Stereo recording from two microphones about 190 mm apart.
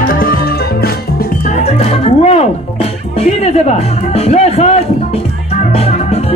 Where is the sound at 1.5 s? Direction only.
35° left (ahead or behind).